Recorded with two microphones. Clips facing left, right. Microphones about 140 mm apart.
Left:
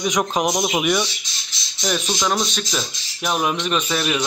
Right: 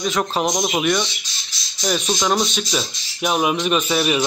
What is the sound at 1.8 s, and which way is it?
A man's voice, 5° right (ahead or behind).